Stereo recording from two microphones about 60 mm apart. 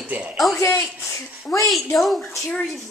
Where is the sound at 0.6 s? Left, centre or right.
Left.